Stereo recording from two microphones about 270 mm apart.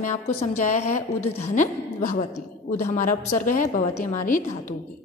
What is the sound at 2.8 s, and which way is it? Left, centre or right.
Mantra, left.